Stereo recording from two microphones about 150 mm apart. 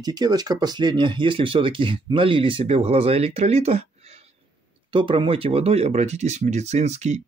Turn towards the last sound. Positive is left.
turn(degrees=-45)  # may be behind; listen again after turning